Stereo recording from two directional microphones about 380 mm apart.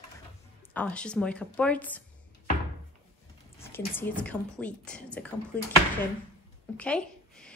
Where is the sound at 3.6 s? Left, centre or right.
Centre.